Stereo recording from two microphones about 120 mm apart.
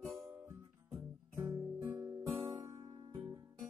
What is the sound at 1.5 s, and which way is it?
Guitar, 20° right (ahead or behind).